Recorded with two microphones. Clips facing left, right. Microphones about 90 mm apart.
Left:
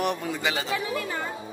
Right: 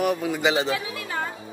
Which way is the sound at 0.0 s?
5° right (ahead or behind).